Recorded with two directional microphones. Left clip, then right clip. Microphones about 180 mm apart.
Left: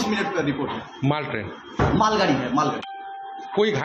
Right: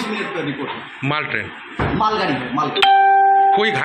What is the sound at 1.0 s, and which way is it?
Speech, 15° left (ahead or behind).